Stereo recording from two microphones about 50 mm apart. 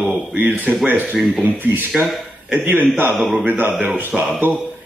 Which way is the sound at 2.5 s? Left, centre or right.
Right.